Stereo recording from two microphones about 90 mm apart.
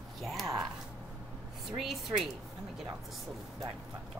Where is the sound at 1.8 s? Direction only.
Centre (ahead or behind).